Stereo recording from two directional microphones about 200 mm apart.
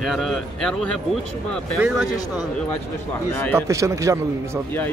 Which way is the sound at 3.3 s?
10° left (ahead or behind).